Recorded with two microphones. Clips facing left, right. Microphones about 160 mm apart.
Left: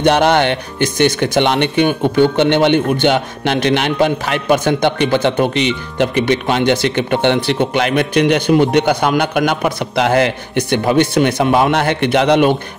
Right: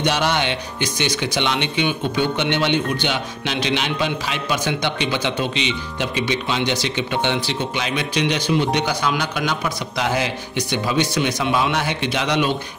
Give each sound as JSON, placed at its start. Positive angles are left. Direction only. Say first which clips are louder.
{"t": 0.0, "sound": "speech", "louder": "left 8 dB", "side_deg": 55}